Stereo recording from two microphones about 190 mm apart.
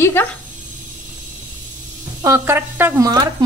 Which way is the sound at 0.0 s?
10° left (ahead or behind).